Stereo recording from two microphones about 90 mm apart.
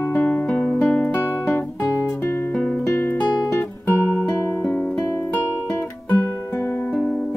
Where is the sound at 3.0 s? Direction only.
20° left (ahead or behind).